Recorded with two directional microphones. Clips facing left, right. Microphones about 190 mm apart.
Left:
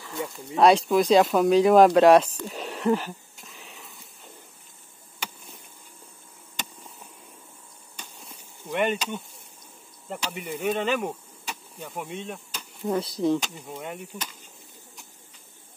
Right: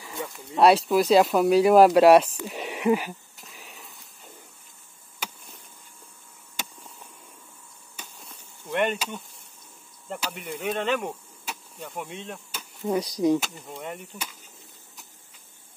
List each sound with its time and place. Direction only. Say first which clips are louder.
0.2 s speech: even; 5° right (ahead or behind)
3.3 s a sound: even; centre (ahead or behind)
5.2 s chop: even; centre (ahead or behind)
6.5 s fireworks: even; 5° right (ahead or behind)
7.9 s a sound: even; 5° right (ahead or behind)
8.6 s speech: even; centre (ahead or behind)
11.4 s a sound: even; centre (ahead or behind)
13.0 s speech: right 4 dB; 15° right (ahead or behind)
13.6 s speech: left 1 dB; centre (ahead or behind)